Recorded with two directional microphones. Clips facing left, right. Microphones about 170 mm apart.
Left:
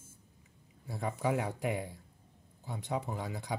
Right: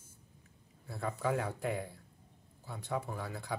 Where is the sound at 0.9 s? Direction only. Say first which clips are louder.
Left 1 dB; 15° left (ahead or behind).